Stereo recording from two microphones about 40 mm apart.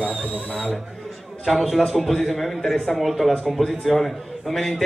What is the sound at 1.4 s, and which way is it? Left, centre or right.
A man's voice, centre.